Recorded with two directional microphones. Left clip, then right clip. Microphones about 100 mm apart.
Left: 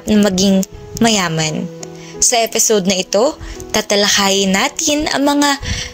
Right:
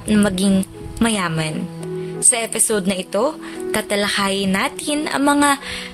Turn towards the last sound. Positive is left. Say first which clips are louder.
# left 2 dB
turn(degrees=25)  # may be behind; listen again after turning